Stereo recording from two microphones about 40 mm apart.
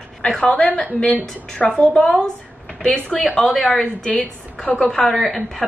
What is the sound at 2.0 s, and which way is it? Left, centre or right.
Speech, left.